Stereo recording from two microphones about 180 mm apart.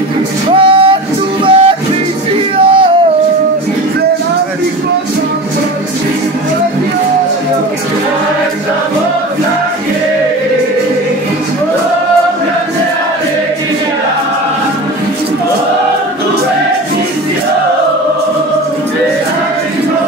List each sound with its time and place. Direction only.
0.5 s music: 30° right (ahead or behind)
2.5 s male singing: 30° right (ahead or behind)